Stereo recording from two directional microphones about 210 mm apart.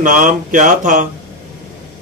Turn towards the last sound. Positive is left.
turn(degrees=-40)  # may be behind; listen again after turning